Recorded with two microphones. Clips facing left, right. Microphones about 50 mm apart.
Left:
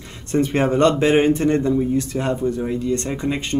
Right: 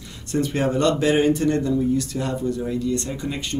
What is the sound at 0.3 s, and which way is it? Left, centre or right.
Speech, left.